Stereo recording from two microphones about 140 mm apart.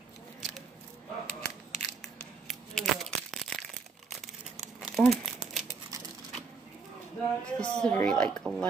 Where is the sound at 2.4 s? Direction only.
Centre (ahead or behind).